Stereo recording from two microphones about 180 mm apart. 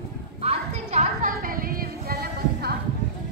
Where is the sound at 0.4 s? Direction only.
40° right (ahead or behind); by 2.7 s 60° right (ahead or behind).